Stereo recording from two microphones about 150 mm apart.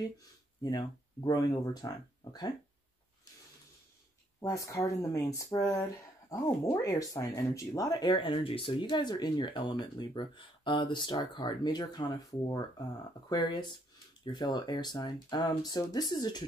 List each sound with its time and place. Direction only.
0.6 s speech: 25° left (ahead or behind)
4.4 s speech: 20° left (ahead or behind)